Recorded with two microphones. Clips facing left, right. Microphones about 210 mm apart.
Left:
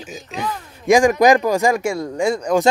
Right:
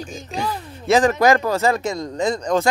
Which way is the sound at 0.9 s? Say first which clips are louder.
Left 3 dB; 15° left (ahead or behind).